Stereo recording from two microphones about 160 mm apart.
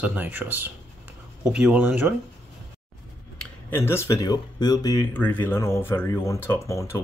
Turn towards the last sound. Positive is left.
turn(degrees=20)  # may be behind; listen again after turning